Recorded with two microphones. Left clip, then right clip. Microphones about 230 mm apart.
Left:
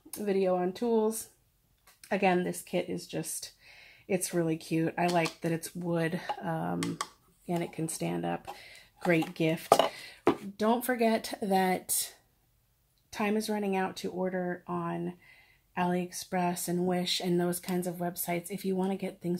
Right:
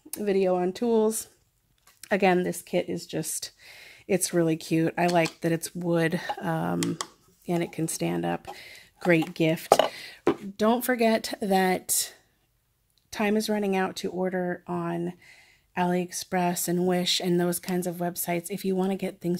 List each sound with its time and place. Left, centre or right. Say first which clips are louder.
0.1 s speech: right 4 dB; right